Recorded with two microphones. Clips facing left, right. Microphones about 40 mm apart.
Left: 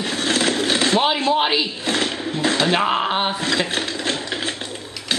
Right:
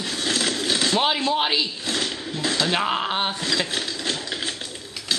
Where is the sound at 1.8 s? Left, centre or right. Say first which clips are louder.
Left 5 dB; left.